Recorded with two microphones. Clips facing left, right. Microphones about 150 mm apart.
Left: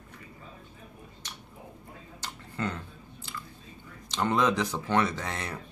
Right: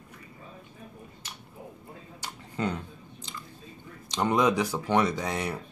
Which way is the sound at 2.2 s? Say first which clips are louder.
Right 3 dB; 15° right (ahead or behind).